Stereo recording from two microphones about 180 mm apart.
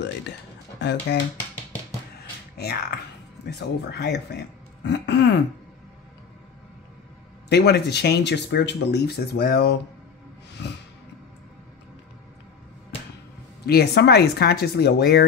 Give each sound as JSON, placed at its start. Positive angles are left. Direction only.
{"t": 1.1, "sound": "speech", "side_deg": 65}
{"t": 2.5, "sound": "speech", "side_deg": 65}
{"t": 7.4, "sound": "speech", "side_deg": 65}
{"t": 13.7, "sound": "speech", "side_deg": 65}